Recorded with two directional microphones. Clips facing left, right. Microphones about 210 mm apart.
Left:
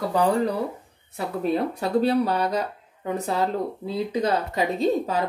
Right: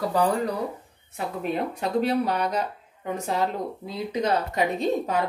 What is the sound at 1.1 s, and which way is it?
Speech, 35° left (ahead or behind).